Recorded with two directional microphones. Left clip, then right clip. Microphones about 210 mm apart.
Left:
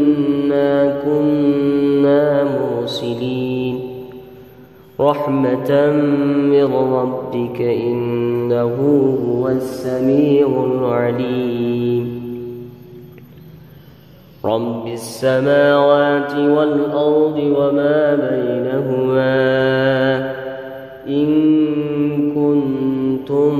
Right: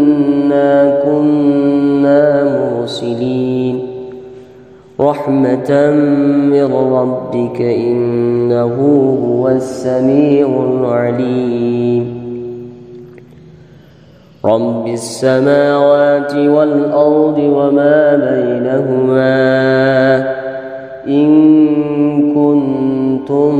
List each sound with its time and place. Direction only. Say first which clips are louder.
0.0 s mantra: right 4 dB; 10° right (ahead or behind)
4.9 s mantra: right 3 dB; 15° right (ahead or behind)
14.4 s mantra: right 7 dB; 15° right (ahead or behind)